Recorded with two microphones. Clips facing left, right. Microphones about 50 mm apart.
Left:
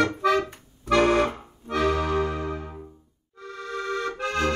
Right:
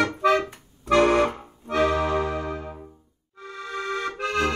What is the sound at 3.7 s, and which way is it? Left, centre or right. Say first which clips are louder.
Accordion: even; right.